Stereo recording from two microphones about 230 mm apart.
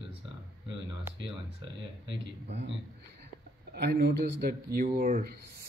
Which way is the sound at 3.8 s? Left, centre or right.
Right.